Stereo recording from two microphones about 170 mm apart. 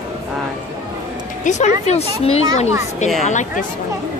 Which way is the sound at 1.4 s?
45° left (ahead or behind).